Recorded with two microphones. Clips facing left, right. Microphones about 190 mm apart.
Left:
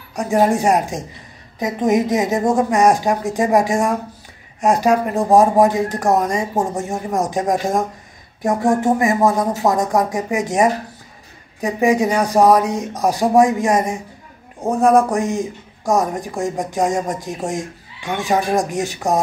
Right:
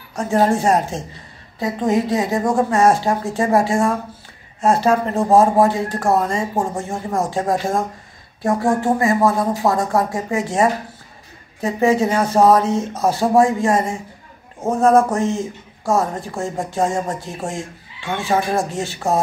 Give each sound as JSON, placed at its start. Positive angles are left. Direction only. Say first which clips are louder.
{"t": 0.1, "sound": "speech", "louder": "left 1 dB", "side_deg": 15}